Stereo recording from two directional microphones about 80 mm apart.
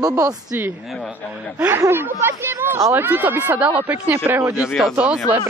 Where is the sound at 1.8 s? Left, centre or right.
Right.